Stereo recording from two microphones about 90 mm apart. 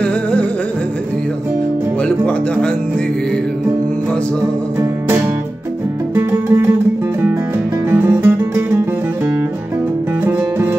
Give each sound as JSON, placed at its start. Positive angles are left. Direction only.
{"t": 0.0, "sound": "music", "side_deg": 10}
{"t": 2.0, "sound": "music", "side_deg": 10}
{"t": 6.1, "sound": "music", "side_deg": -25}
{"t": 7.9, "sound": "music", "side_deg": -25}